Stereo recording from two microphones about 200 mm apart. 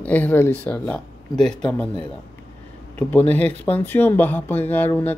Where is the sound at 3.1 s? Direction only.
10° left (ahead or behind).